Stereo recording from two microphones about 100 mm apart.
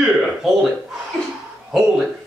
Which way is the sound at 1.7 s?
5° right (ahead or behind).